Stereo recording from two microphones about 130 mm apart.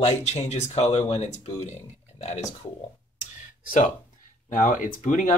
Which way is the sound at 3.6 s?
90° left.